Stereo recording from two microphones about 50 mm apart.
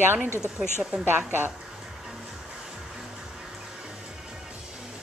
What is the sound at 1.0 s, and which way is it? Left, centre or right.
Speech, right.